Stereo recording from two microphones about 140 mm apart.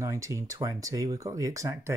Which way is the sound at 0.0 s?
20° right (ahead or behind).